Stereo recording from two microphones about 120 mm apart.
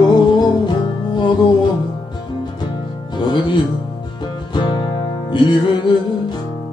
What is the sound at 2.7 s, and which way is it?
Music, 40° left (ahead or behind).